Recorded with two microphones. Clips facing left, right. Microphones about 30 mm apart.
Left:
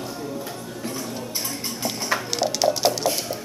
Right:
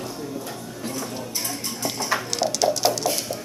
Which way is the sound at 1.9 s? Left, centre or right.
Centre.